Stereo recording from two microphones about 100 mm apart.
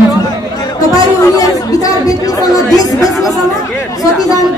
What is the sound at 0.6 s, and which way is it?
Chatter, 40° left (ahead or behind).